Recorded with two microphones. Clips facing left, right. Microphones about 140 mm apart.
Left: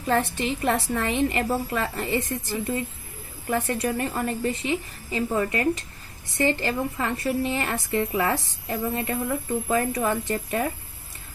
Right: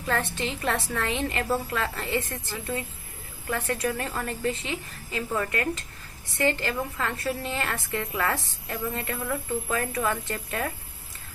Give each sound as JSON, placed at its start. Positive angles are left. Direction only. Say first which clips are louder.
{"t": 0.0, "sound": "a woman's voice", "louder": "left 4 dB", "side_deg": 20}